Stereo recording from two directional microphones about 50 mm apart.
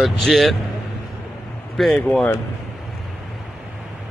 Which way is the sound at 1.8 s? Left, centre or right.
Centre.